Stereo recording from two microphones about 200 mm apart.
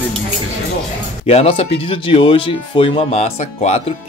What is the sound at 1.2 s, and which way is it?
Speech, 30° left (ahead or behind).